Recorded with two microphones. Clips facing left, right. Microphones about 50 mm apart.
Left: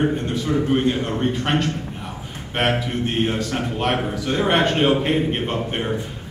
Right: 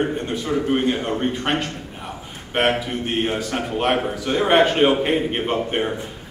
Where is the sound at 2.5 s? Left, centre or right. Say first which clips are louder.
Right 1 dB; centre.